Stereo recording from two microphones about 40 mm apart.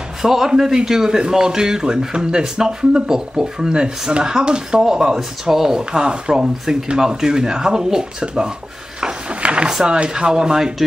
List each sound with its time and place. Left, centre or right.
0.2 s a man's voice: centre
9.4 s a sound: right
9.7 s speech: centre